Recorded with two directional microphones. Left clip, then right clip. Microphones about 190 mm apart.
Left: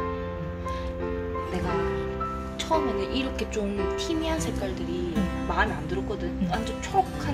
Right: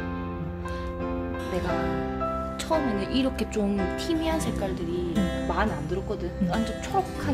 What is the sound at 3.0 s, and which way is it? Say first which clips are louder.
Speech: right 1 dB; 50° right (ahead or behind).